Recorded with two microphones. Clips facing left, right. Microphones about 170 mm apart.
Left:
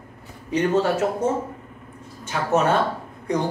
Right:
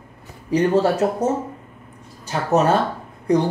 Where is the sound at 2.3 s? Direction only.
35° right (ahead or behind).